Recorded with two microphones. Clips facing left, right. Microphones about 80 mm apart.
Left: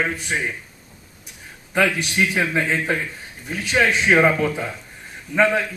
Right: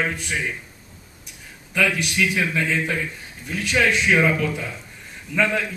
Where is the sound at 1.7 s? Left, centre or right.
Left.